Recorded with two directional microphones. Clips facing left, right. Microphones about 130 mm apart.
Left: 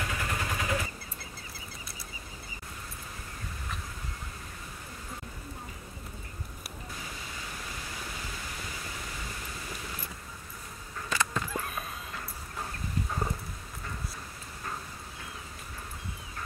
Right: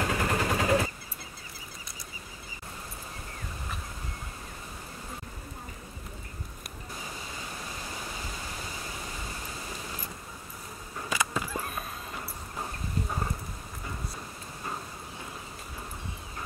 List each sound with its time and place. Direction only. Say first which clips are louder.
0.0 s vehicle: right 6 dB; 40° right (ahead or behind)
11.1 s vehicle: right 1 dB; 10° right (ahead or behind)